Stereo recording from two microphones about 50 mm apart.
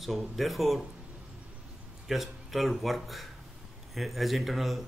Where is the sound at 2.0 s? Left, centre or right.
Centre.